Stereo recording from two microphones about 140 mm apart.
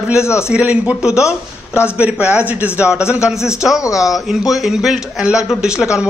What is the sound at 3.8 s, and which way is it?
Speech, 25° left (ahead or behind).